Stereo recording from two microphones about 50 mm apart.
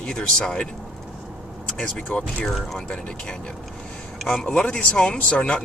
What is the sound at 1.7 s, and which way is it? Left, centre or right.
Speech, left.